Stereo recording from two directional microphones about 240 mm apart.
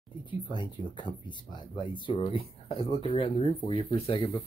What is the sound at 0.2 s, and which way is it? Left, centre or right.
Speech, centre.